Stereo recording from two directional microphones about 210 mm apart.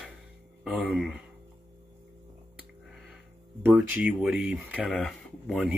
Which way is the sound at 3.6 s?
5° right (ahead or behind).